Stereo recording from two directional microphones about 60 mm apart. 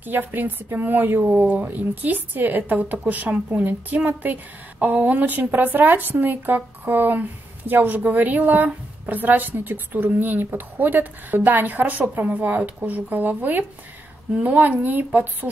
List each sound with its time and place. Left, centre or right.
0.0 s a woman's voice: right